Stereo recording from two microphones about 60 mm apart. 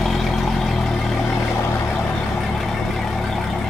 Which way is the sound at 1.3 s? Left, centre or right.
Left.